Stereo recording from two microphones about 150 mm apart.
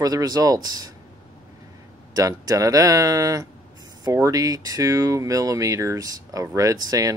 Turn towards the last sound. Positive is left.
turn(degrees=-25)  # may be behind; listen again after turning